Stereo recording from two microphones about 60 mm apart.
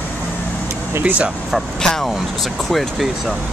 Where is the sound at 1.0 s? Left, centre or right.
Right.